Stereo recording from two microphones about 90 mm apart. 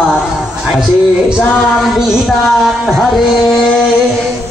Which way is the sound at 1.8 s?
5° right (ahead or behind).